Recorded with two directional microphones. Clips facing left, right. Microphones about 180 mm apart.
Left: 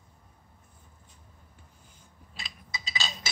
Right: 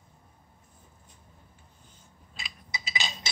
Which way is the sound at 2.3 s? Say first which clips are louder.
Right 1 dB; 15° right (ahead or behind).